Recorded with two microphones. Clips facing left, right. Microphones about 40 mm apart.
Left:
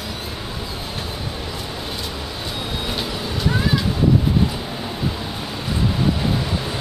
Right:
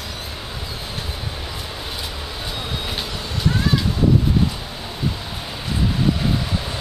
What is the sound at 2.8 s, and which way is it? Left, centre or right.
Vehicle, centre.